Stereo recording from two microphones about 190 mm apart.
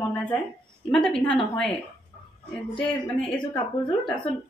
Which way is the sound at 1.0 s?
5° left (ahead or behind).